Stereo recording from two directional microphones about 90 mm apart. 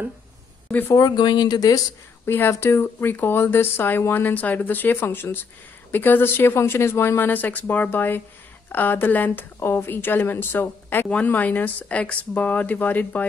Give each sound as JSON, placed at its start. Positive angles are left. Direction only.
{"t": 0.7, "sound": "speech", "side_deg": 20}
{"t": 0.9, "sound": "speech", "side_deg": 50}
{"t": 2.2, "sound": "speech", "side_deg": 25}